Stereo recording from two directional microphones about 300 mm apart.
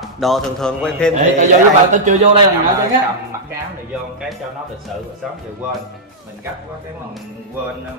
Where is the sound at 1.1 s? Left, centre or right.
Right.